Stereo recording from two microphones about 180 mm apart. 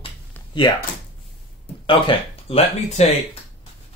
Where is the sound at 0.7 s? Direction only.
25° left (ahead or behind).